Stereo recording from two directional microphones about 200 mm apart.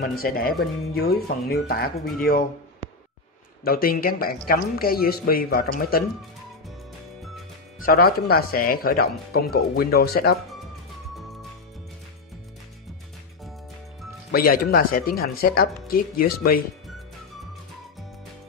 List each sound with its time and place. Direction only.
0.0 s speech: 45° left (ahead or behind)
3.6 s speech: 45° left (ahead or behind)
7.8 s speech: 50° left (ahead or behind)
14.3 s speech: 45° left (ahead or behind)